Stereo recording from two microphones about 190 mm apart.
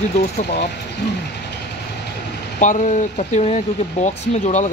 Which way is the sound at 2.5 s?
40° left (ahead or behind).